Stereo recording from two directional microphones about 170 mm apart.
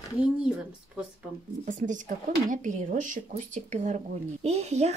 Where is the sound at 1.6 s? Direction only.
50° right (ahead or behind).